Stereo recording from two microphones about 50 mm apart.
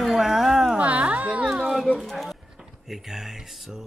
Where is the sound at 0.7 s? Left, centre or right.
Right.